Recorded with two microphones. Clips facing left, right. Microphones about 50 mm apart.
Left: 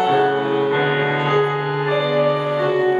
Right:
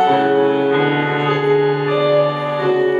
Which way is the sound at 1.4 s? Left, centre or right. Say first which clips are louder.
Right 5 dB; centre.